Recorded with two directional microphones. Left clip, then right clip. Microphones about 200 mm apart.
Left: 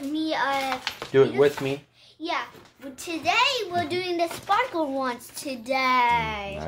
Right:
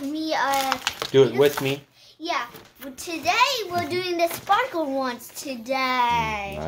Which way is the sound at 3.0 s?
5° left (ahead or behind).